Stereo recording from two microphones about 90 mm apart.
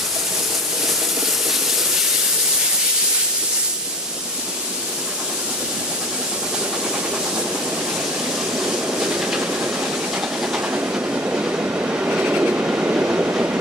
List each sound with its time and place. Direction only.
8.5 s train: 10° right (ahead or behind)